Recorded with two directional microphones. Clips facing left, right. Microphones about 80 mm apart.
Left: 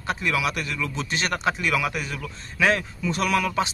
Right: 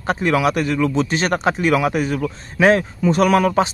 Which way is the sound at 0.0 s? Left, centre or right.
Right.